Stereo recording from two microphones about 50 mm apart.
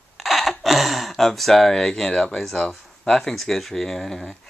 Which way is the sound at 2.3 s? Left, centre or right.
Centre.